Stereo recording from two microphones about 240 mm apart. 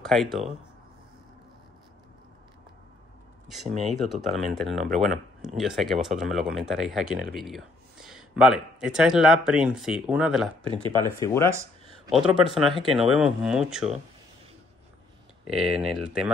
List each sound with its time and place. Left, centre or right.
0.1 s speech: centre
3.8 s speech: centre
10.7 s speech: centre
11.1 s speech: centre
12.1 s speech: centre
15.5 s speech: centre